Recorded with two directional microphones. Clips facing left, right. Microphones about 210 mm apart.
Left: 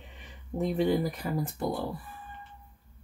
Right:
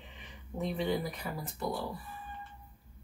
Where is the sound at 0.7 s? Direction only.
45° left (ahead or behind).